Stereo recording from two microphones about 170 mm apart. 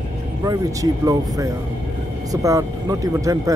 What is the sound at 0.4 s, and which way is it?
Speech, 20° right (ahead or behind).